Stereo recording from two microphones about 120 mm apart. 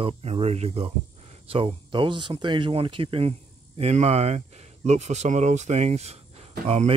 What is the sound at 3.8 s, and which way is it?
Speech, 65° right (ahead or behind).